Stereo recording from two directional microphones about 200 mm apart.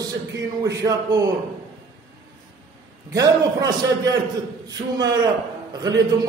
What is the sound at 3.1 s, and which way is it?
A man's voice, 20° right (ahead or behind).